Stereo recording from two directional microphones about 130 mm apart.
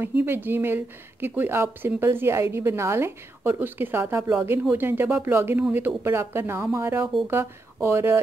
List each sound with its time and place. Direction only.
0.0 s speech: 15° right (ahead or behind)